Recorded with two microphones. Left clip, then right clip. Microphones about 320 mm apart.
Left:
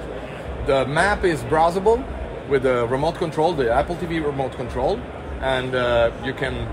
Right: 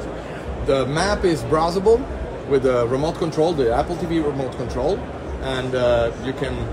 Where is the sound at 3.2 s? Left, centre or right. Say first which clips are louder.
Right 2 dB; left.